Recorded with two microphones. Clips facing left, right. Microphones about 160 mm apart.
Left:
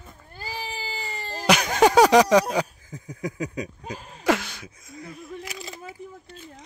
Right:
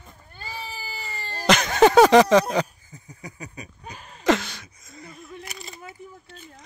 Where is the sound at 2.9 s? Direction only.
90° left.